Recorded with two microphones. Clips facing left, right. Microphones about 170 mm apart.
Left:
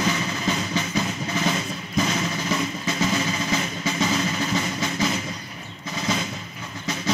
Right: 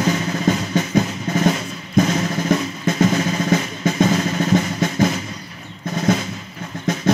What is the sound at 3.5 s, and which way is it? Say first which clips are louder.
Percussion: right 6 dB; 50° right (ahead or behind).